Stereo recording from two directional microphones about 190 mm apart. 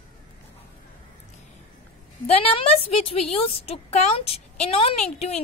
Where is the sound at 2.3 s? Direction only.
30° left (ahead or behind).